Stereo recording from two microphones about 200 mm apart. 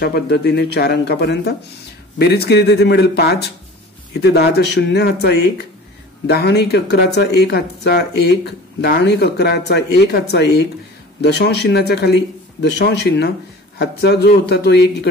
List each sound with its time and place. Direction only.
0.0 s speech: 55° left (ahead or behind)